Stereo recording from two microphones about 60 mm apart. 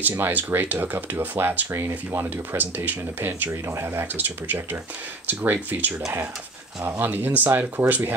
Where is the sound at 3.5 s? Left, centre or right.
Right.